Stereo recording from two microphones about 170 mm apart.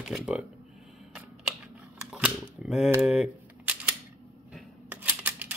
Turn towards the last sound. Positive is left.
turn(degrees=-10)  # may be behind; listen again after turning